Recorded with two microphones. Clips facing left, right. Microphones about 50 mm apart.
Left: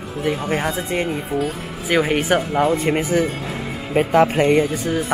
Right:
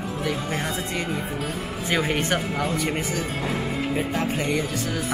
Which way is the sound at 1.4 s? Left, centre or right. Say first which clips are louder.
Left 5 dB; centre.